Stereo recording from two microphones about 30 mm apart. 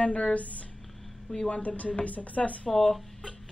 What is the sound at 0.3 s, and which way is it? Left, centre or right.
Speech, left.